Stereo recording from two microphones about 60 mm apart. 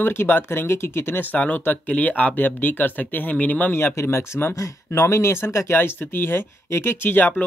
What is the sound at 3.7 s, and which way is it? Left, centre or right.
Speech, left.